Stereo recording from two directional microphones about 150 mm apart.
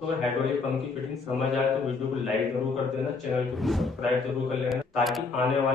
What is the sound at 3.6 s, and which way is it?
Bicycle bell, centre (ahead or behind).